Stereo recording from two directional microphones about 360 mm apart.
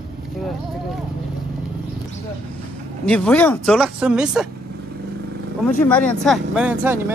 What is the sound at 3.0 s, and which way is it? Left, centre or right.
Speech, centre.